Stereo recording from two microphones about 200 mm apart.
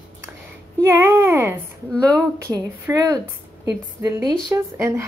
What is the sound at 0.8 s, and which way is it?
A woman's voice, 10° right (ahead or behind).